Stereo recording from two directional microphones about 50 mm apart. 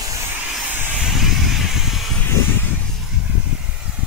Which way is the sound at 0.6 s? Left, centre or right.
Right.